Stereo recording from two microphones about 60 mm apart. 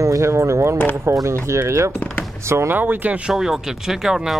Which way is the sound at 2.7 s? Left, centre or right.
Right.